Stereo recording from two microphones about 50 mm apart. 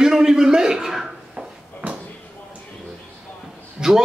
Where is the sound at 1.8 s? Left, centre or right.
Right.